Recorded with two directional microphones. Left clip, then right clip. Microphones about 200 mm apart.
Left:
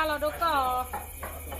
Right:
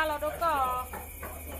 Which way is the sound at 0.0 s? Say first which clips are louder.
Left 2 dB; 50° left (ahead or behind).